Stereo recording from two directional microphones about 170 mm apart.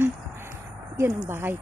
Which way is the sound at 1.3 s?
15° right (ahead or behind).